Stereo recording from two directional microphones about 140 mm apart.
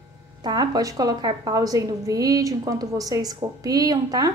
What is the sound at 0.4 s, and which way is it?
A woman's voice, 30° right (ahead or behind).